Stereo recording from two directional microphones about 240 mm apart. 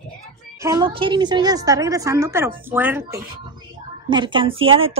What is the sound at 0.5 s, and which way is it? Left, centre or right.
A woman's voice, centre.